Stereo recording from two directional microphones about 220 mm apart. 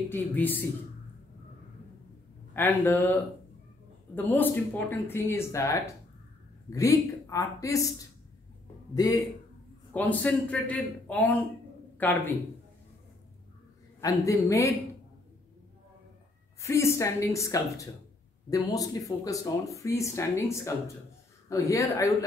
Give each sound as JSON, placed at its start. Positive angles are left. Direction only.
{"t": 0.1, "sound": "speech", "side_deg": 10}
{"t": 2.5, "sound": "speech", "side_deg": 10}
{"t": 8.9, "sound": "speech", "side_deg": 15}
{"t": 14.0, "sound": "speech", "side_deg": 15}
{"t": 16.6, "sound": "speech", "side_deg": 10}